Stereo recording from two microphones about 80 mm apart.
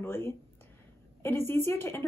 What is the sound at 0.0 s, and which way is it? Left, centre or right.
A woman's voice, left.